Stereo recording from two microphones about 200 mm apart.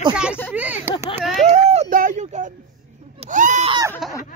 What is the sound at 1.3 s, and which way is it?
Speech, 35° right (ahead or behind).